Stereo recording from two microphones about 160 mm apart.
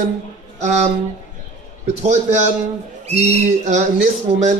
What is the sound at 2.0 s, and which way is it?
Speech, 45° right (ahead or behind).